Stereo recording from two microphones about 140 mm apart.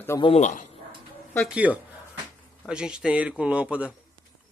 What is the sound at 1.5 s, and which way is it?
Speech, 10° right (ahead or behind).